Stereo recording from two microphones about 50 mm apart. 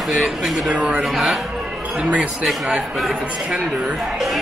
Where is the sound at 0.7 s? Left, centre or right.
Centre.